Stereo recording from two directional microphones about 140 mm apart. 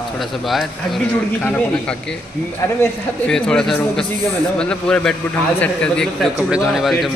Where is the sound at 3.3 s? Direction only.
5° left (ahead or behind).